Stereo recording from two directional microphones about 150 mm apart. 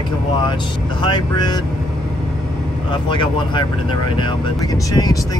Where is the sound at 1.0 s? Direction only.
30° left (ahead or behind).